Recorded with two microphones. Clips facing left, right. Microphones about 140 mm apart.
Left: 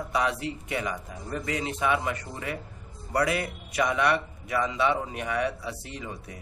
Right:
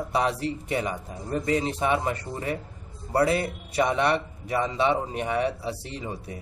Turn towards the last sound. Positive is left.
turn(degrees=-30)  # may be behind; listen again after turning